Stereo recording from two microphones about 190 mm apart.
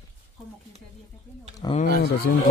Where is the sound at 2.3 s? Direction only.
55° left (ahead or behind).